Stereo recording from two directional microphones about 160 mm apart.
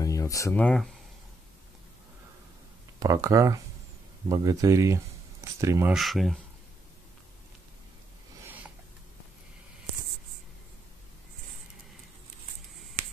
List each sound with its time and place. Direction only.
0.0 s a sound: 20° left (ahead or behind)
0.6 s speech: 5° left (ahead or behind)
3.0 s speech: 20° right (ahead or behind)
5.9 s speech: centre (ahead or behind)